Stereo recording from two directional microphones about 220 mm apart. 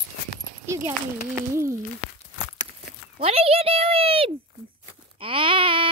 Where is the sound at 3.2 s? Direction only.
25° right (ahead or behind).